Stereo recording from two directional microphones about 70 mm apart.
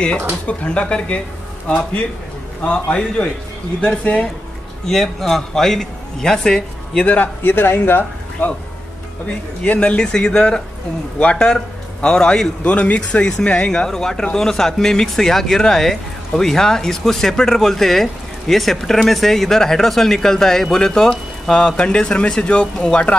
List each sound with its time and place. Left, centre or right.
0.5 s a man's voice: centre
2.6 s a man's voice: centre
4.8 s a man's voice: centre
7.1 s a man's voice: left
9.6 s a man's voice: centre